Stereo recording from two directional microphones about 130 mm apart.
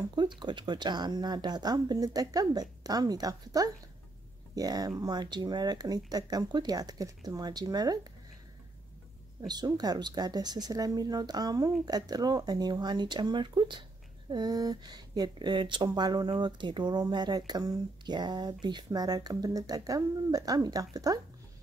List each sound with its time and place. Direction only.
0.4 s a woman's voice: 35° right (ahead or behind)
9.5 s speech: 30° right (ahead or behind)